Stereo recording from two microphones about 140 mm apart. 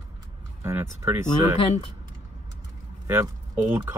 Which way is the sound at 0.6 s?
20° right (ahead or behind).